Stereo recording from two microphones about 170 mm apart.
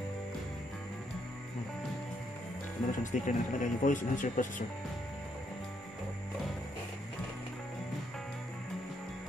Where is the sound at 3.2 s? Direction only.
50° left (ahead or behind).